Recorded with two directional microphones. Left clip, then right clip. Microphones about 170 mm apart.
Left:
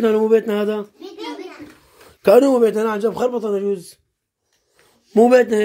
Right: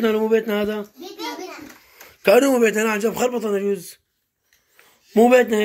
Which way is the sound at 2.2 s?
30° left (ahead or behind).